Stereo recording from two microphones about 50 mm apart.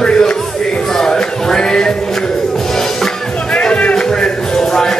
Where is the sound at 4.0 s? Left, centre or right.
Centre.